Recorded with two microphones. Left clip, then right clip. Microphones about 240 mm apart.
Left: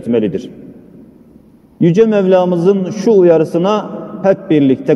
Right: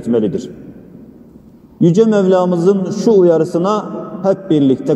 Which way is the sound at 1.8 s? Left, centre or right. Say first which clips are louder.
Left 1 dB; left.